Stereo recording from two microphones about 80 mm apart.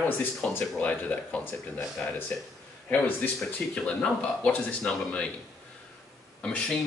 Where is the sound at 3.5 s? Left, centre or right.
Centre.